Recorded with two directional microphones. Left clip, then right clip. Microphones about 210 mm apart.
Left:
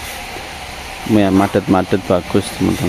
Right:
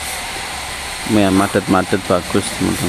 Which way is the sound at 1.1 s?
15° left (ahead or behind).